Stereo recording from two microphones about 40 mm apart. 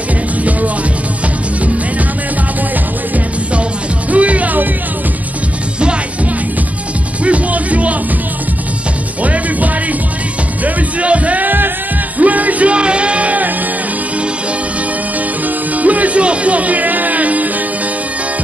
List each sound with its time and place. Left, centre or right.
4.1 s music: right
7.2 s music: right
9.2 s music: right
11.4 s music: right
12.2 s music: right
15.4 s music: right